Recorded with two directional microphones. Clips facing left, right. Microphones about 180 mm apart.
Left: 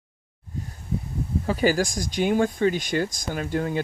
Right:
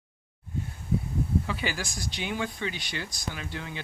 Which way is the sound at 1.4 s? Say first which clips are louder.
Left 11 dB; 40° left (ahead or behind).